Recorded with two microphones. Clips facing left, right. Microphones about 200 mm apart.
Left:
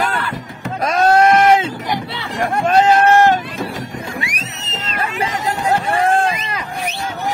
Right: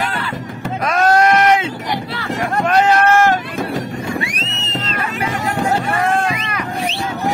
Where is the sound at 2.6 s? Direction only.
25° left (ahead or behind).